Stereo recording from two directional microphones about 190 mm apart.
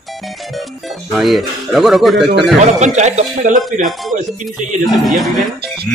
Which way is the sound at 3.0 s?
40° right (ahead or behind).